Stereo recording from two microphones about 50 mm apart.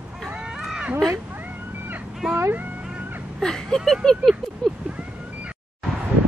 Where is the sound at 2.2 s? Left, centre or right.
Centre.